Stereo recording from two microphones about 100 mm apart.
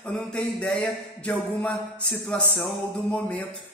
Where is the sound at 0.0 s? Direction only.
10° left (ahead or behind).